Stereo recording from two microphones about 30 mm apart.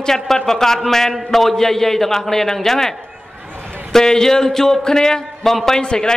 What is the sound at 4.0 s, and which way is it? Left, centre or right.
A man's voice, left.